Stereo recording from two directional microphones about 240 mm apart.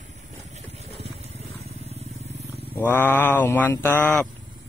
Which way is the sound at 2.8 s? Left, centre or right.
Centre.